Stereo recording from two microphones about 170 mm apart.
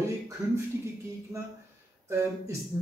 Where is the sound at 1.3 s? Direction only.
20° right (ahead or behind).